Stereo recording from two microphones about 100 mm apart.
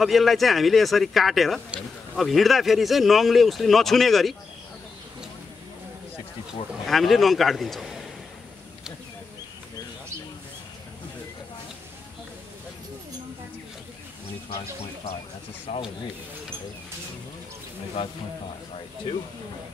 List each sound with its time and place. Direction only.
0.0 s speech: centre (ahead or behind)
6.9 s speech: centre (ahead or behind)
15.7 s speech: 90° left
18.0 s a man's voice: 65° left (ahead or behind)